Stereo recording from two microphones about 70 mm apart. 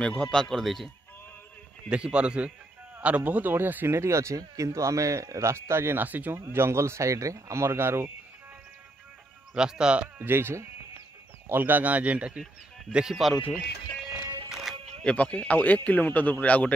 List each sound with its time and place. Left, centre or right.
0.0 s speech: centre
1.9 s speech: centre; by 4.4 s right
4.4 s speech: right
6.0 s speech: right
6.3 s speech: right
9.5 s speech: centre
10.1 s speech: right; by 12.4 s centre
12.9 s speech: centre
14.5 s music: centre
15.0 s a man's voice: centre